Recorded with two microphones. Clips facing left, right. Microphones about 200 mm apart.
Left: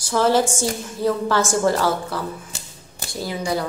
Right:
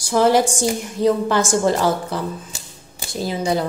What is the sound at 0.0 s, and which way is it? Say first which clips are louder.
A woman's voice: right 2 dB; 15° right (ahead or behind).